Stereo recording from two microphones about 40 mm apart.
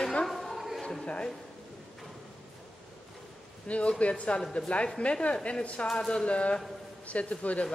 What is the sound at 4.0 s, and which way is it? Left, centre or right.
A woman's voice, left.